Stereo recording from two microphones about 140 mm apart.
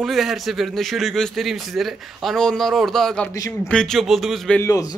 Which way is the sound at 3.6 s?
5° left (ahead or behind).